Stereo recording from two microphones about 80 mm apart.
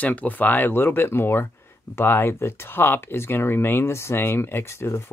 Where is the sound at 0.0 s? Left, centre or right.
Centre.